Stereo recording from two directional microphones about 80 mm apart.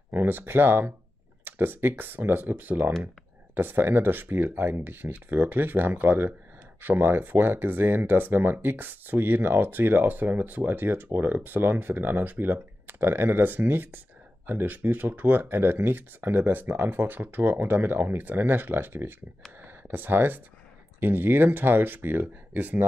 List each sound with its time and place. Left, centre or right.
0.1 s speech: right